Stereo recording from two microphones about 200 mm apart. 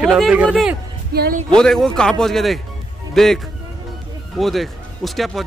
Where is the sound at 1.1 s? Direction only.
50° right (ahead or behind).